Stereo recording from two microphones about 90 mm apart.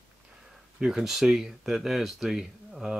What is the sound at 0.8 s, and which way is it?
Speech, 5° right (ahead or behind).